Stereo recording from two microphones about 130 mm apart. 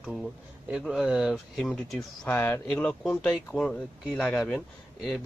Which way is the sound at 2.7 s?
5° left (ahead or behind).